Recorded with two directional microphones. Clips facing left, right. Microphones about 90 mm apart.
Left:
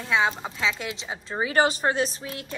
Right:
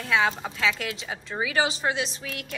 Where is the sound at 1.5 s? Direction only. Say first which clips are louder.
Left 4 dB; 45° left (ahead or behind).